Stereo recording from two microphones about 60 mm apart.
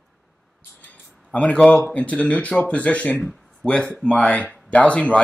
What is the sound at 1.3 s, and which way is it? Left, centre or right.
Speech, centre.